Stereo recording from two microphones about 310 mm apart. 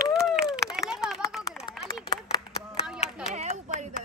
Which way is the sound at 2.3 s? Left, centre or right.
Centre.